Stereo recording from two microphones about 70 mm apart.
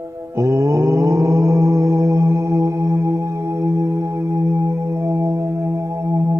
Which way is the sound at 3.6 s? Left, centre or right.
Right.